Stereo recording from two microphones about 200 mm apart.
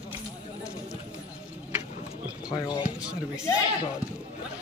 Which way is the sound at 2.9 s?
5° right (ahead or behind).